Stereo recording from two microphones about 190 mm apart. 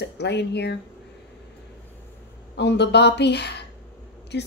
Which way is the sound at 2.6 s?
65° left (ahead or behind).